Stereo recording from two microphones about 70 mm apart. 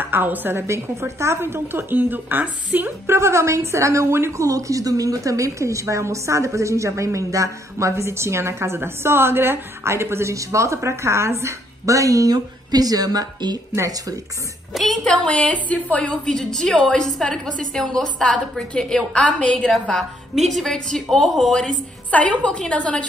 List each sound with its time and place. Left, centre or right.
0.0 s a woman's voice: right
3.1 s a woman's voice: right
13.7 s speech: right
14.7 s a woman's voice: centre
19.7 s a woman's voice: centre
22.1 s a woman's voice: centre